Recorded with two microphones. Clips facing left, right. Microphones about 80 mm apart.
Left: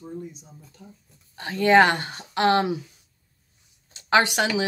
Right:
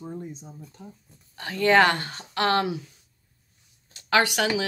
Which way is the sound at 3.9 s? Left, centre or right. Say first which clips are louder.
Left 2 dB; left.